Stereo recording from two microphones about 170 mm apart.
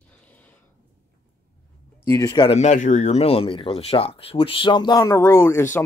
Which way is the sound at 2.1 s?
20° left (ahead or behind).